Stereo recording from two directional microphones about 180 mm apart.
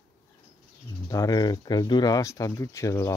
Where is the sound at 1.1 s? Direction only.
20° left (ahead or behind).